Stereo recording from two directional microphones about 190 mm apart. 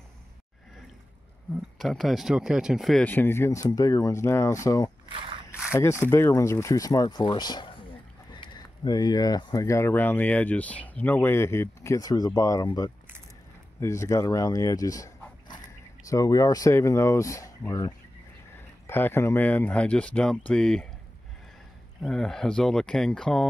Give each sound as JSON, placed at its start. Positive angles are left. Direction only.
{"t": 1.8, "sound": "speech", "side_deg": 0}
{"t": 13.7, "sound": "speech", "side_deg": 15}
{"t": 16.1, "sound": "speech", "side_deg": 20}
{"t": 22.0, "sound": "speech", "side_deg": 0}